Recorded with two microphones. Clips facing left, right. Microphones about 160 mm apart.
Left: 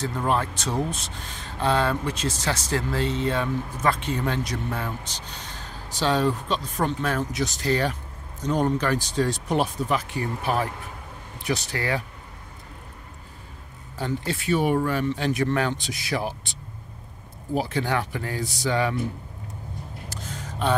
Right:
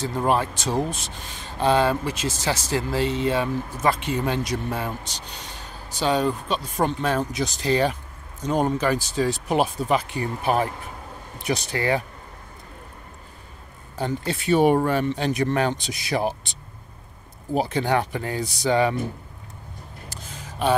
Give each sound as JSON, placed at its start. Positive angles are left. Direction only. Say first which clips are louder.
{"t": 0.2, "sound": "speech", "louder": "right 3 dB", "side_deg": -15}
{"t": 5.9, "sound": "speech", "louder": "right 1 dB", "side_deg": -5}
{"t": 6.8, "sound": "speech", "louder": "right 4 dB", "side_deg": -20}
{"t": 9.8, "sound": "speech", "louder": "right 3 dB", "side_deg": -20}
{"t": 13.9, "sound": "speech", "louder": "right 2 dB", "side_deg": -20}
{"t": 17.6, "sound": "speech", "louder": "right 3 dB", "side_deg": -20}